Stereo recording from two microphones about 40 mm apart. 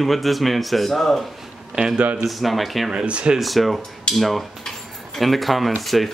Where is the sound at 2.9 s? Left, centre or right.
Right.